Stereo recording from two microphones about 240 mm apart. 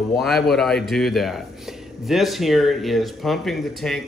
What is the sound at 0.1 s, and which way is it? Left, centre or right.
A man's voice, centre.